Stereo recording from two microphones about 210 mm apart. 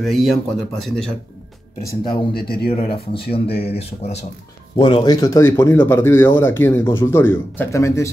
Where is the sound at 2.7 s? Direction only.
25° left (ahead or behind).